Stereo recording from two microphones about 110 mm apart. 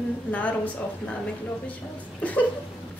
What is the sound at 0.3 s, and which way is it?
Speech, 15° left (ahead or behind).